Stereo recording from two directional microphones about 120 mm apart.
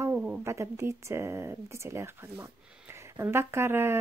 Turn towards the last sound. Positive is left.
turn(degrees=-20)  # may be behind; listen again after turning